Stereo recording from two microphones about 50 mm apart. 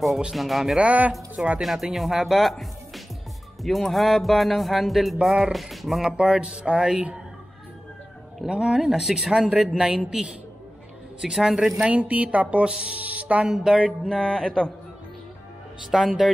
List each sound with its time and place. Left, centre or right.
0.3 s music: centre
0.7 s speech: right
1.6 s music: centre
3.6 s music: centre
6.0 s speech: centre
8.5 s speech: centre
11.1 s speech: centre
11.8 s speech: right
13.5 s speech: centre
14.0 s speech: centre
15.9 s music: centre